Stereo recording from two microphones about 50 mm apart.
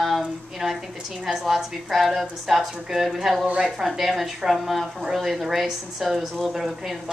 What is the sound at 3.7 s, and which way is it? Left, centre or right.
A woman's voice, centre.